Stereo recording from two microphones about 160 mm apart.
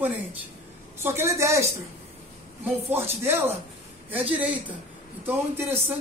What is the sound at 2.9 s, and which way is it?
A woman's voice, 15° right (ahead or behind).